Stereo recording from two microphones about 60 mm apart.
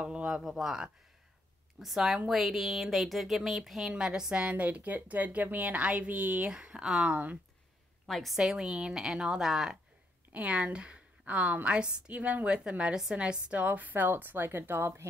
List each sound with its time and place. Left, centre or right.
0.0 s speech: centre
0.4 s a woman's voice: centre
7.0 s a woman's voice: right
8.1 s a woman's voice: centre
8.4 s a woman's voice: centre
10.3 s a woman's voice: centre; by 15.0 s right